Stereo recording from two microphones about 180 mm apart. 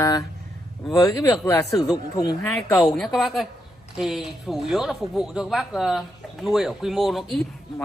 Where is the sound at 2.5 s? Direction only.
5° left (ahead or behind).